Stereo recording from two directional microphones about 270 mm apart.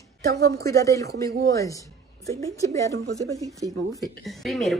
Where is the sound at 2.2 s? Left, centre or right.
Centre.